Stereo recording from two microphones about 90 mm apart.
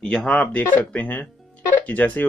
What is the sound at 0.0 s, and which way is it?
Speech, 10° left (ahead or behind).